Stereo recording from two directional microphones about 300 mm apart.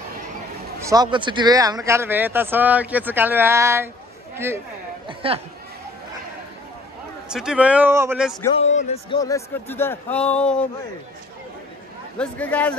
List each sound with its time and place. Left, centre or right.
0.8 s speech: centre
5.0 s speech: centre
7.2 s speech: centre
8.4 s a man's voice: left; by 10.7 s centre
12.2 s speech: centre